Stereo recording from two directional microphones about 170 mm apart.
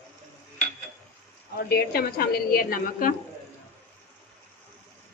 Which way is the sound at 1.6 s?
65° left (ahead or behind).